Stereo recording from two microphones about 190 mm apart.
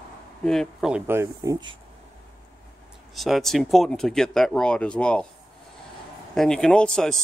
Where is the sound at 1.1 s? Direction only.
15° right (ahead or behind).